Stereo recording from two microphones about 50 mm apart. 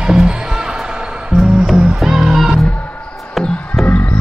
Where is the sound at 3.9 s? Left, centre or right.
Left.